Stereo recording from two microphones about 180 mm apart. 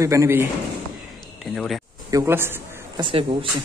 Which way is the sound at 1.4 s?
Centre (ahead or behind).